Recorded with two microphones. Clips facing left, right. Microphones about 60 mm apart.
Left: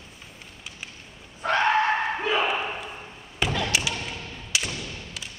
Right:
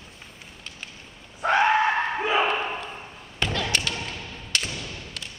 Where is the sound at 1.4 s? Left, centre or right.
Centre.